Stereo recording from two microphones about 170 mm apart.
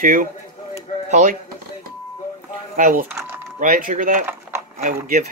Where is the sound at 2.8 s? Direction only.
55° right (ahead or behind).